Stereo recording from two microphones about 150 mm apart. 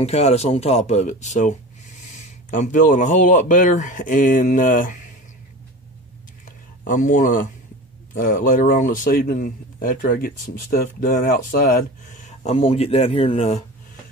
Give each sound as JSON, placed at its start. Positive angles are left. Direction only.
{"t": 0.0, "sound": "speech", "side_deg": 45}
{"t": 2.5, "sound": "speech", "side_deg": 60}
{"t": 6.9, "sound": "speech", "side_deg": 60}
{"t": 12.3, "sound": "speech", "side_deg": 45}